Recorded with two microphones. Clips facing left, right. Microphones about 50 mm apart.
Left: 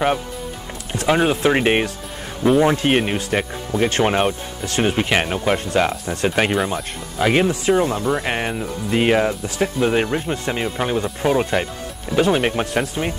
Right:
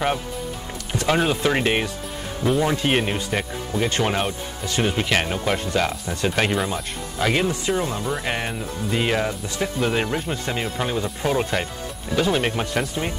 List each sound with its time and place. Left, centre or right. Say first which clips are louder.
0.9 s speech: left 3 dB; centre; by 2.9 s left
2.9 s speech: left 3 dB; centre
10.3 s speech: left 3 dB; left